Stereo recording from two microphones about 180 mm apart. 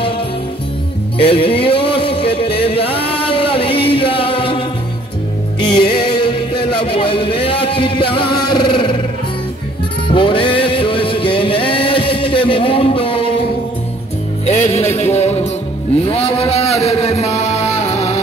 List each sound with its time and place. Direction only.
1.1 s music: 30° left (ahead or behind)
10.0 s music: 30° left (ahead or behind)